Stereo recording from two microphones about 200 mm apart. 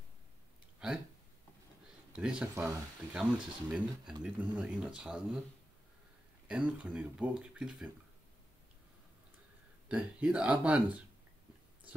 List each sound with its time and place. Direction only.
0.7 s a sound: centre (ahead or behind)
2.1 s speech: 5° right (ahead or behind)
6.8 s speech: 5° right (ahead or behind)
9.8 s speech: 5° right (ahead or behind)